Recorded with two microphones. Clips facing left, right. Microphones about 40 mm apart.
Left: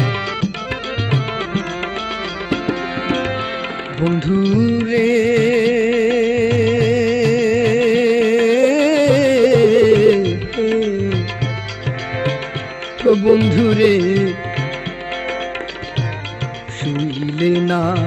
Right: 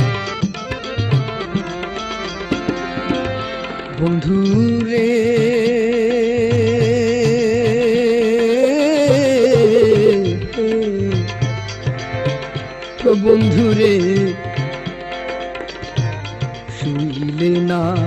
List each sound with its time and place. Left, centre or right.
0.0 s music: left
2.0 s music: left
3.1 s music: left
4.4 s music: left
7.3 s music: left
13.0 s music: left; by 14.2 s centre
17.4 s music: left